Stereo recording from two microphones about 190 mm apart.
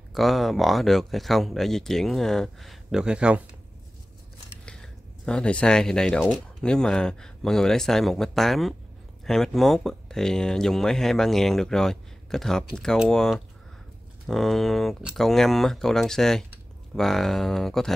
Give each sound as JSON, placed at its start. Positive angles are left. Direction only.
{"t": 0.1, "sound": "speech", "side_deg": 0}
{"t": 4.6, "sound": "speech", "side_deg": 5}